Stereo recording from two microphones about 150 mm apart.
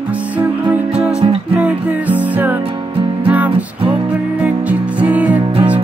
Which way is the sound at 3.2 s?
10° right (ahead or behind).